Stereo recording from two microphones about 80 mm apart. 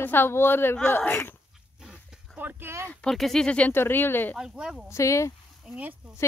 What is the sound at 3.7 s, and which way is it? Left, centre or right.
Speech, left.